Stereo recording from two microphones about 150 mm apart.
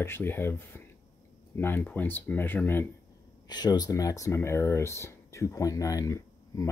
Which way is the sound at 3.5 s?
25° left (ahead or behind).